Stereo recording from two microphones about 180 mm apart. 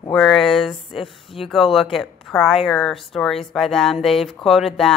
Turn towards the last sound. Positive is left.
turn(degrees=0)  # may be behind; listen again after turning